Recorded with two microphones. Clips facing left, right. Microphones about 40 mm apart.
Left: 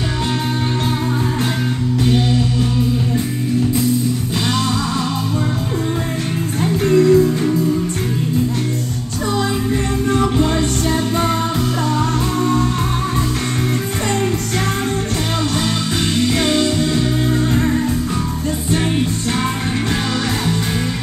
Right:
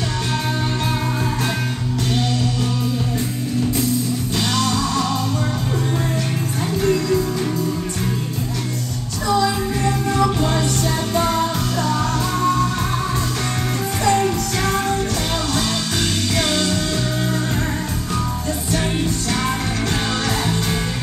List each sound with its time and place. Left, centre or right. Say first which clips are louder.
2.0 s music: left 4 dB; centre
6.8 s music: left 7 dB; left
11.2 s music: left 2 dB; centre
16.2 s music: left 7 dB; centre